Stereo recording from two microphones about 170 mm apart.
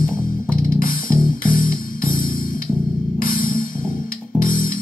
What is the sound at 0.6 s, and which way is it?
Music, 60° left (ahead or behind).